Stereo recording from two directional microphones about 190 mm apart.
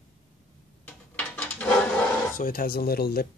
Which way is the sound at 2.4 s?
50° left (ahead or behind).